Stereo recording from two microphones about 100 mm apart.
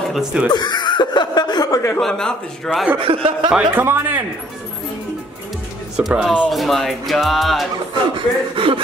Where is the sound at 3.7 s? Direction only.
20° right (ahead or behind).